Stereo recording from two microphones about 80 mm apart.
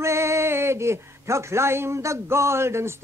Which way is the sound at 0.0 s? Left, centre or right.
Right.